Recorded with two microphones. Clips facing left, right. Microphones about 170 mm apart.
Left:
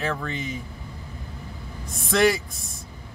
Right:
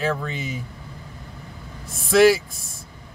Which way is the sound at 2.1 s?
5° right (ahead or behind).